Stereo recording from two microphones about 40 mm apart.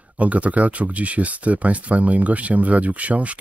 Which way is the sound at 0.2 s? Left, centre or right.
Right.